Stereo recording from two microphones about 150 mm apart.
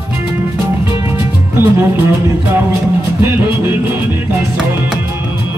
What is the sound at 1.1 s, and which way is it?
Music, 15° right (ahead or behind).